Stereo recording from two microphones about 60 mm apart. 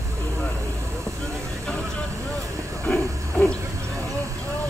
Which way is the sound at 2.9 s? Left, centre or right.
Right.